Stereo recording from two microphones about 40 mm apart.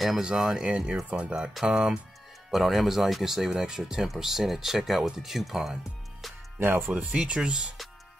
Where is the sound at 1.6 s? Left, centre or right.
Centre.